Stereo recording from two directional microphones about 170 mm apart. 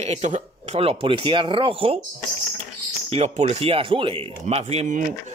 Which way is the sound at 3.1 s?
40° right (ahead or behind).